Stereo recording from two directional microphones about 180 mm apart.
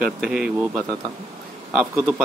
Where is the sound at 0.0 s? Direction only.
5° right (ahead or behind).